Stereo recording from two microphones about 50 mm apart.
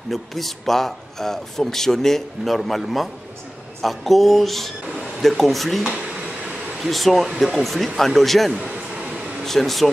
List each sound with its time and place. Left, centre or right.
0.1 s speech: centre